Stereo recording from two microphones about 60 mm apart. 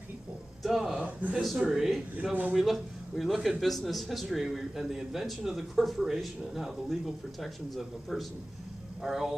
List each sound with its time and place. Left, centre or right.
0.6 s speech: centre
1.2 s speech: right
1.6 s speech: centre